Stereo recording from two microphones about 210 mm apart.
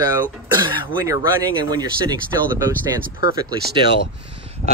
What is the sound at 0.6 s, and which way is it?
Speech, 15° right (ahead or behind).